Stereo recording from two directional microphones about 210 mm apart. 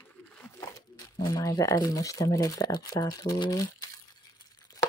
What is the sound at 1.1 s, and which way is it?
Speech, 15° left (ahead or behind).